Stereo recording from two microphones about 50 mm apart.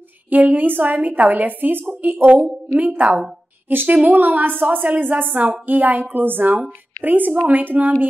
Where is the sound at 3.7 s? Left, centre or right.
Right.